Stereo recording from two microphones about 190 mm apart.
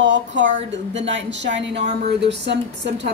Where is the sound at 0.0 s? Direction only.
70° right (ahead or behind).